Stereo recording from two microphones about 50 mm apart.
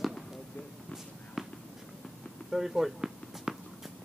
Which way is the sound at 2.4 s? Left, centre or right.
Centre.